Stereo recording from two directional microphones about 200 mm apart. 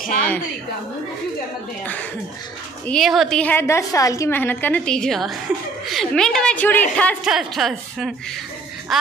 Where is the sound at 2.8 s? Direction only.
Centre (ahead or behind).